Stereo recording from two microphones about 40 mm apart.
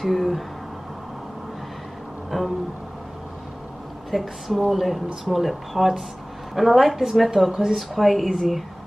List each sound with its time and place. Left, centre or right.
0.0 s speech: centre
2.3 s speech: centre
4.1 s speech: centre